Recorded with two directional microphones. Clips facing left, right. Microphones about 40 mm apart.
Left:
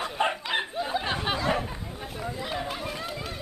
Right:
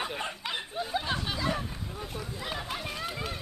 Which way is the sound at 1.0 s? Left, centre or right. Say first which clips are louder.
Left 4 dB; left.